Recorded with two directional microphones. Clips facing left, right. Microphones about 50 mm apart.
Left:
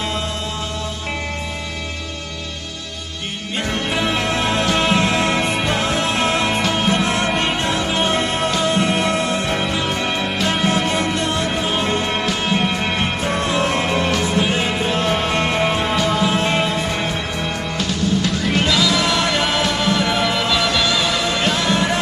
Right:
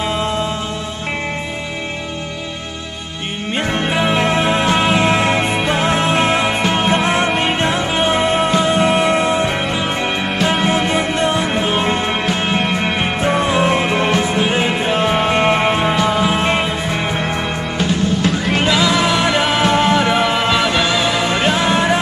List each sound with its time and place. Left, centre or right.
3.9 s music: centre
17.7 s music: right